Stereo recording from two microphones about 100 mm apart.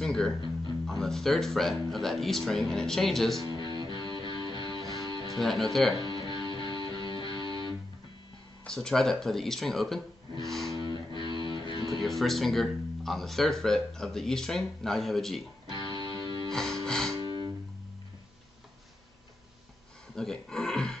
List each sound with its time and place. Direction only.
0.0 s speech: 5° left (ahead or behind)
3.3 s music: 45° right (ahead or behind)
5.4 s speech: centre (ahead or behind)
5.9 s music: 45° right (ahead or behind)
8.6 s speech: 5° left (ahead or behind)
10.7 s music: 45° right (ahead or behind)
12.0 s speech: centre (ahead or behind)
15.7 s music: 50° right (ahead or behind)
16.5 s music: 5° left (ahead or behind)
20.2 s a sound: 5° left (ahead or behind)